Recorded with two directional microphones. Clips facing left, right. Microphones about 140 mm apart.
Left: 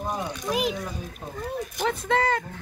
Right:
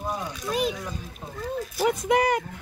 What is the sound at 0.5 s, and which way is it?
Speech, 10° left (ahead or behind).